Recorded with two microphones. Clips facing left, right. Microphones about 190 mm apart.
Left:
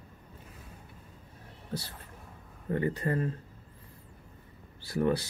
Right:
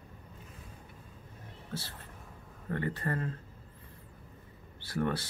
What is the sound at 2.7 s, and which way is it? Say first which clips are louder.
Speech: left 4 dB; 15° left (ahead or behind).